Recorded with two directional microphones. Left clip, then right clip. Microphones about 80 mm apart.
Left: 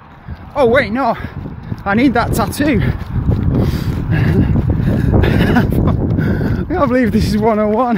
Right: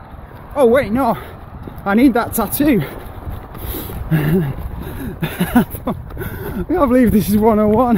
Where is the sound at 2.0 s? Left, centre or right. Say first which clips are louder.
Left 1 dB; centre.